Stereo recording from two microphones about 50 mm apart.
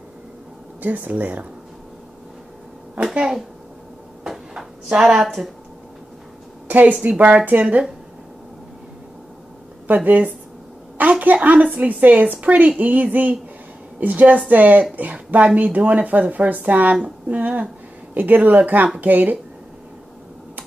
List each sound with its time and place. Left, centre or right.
0.8 s speech: right
4.2 s a sound: centre
6.7 s speech: right
9.8 s a woman's voice: right